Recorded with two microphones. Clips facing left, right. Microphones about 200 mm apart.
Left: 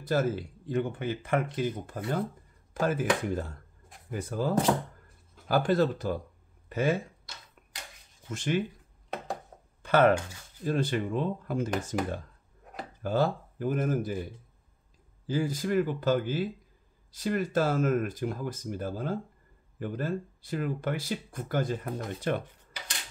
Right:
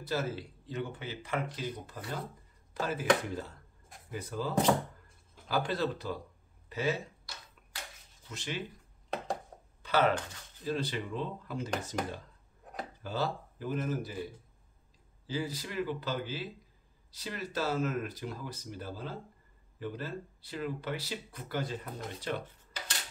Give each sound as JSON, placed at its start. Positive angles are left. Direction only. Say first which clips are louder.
{"t": 0.0, "sound": "speech", "louder": "left 6 dB", "side_deg": 50}
{"t": 8.3, "sound": "speech", "louder": "left 10 dB", "side_deg": 50}
{"t": 9.8, "sound": "speech", "louder": "left 6 dB", "side_deg": 50}
{"t": 15.2, "sound": "speech", "louder": "left 7 dB", "side_deg": 50}
{"t": 22.7, "sound": "dishes", "louder": "right 1 dB", "side_deg": 15}